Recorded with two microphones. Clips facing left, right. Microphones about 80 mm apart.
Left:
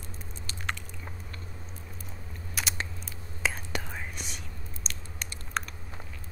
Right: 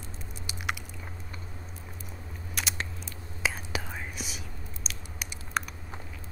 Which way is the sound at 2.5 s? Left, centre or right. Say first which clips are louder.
Even; centre.